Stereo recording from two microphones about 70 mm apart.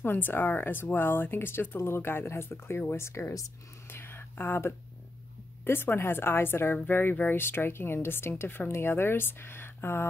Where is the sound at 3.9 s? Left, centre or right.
Left.